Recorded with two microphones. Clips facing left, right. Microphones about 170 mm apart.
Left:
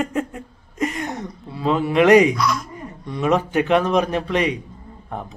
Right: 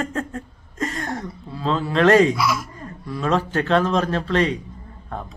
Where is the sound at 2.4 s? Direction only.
5° right (ahead or behind).